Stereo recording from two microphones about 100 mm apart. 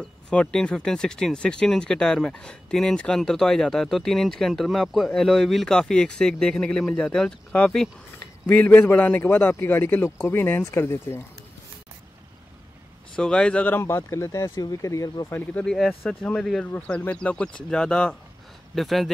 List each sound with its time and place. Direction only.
0.0 s speech: 10° left (ahead or behind)
8.5 s a man's voice: 20° left (ahead or behind)
13.1 s speech: 10° left (ahead or behind)
13.7 s speech: 25° left (ahead or behind)
15.6 s speech: 5° left (ahead or behind)